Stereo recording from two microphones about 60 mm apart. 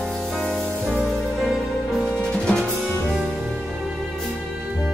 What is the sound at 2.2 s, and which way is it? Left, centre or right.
Music, centre.